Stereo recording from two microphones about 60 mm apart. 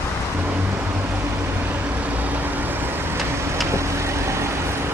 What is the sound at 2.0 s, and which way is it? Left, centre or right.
Vehicle, right.